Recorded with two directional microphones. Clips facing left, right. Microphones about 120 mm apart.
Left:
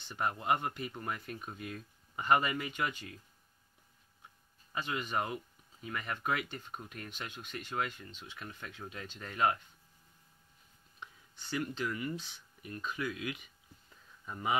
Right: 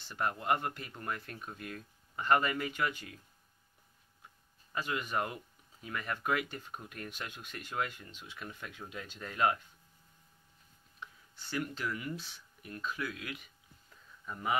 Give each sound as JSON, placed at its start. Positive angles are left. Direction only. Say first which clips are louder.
{"t": 0.1, "sound": "speech", "louder": "even", "side_deg": 5}
{"t": 4.7, "sound": "speech", "louder": "right 1 dB", "side_deg": -5}
{"t": 11.0, "sound": "speech", "louder": "right 1 dB", "side_deg": 0}